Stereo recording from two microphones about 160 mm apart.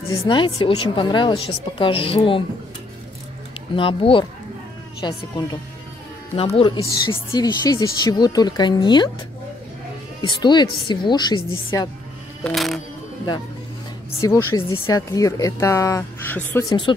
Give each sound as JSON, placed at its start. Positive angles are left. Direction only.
{"t": 0.1, "sound": "speech", "side_deg": 30}
{"t": 3.7, "sound": "speech", "side_deg": 35}
{"t": 6.3, "sound": "speech", "side_deg": 35}
{"t": 10.2, "sound": "speech", "side_deg": 25}
{"t": 12.4, "sound": "speech", "side_deg": 0}
{"t": 14.2, "sound": "speech", "side_deg": 20}
{"t": 16.6, "sound": "speech", "side_deg": 30}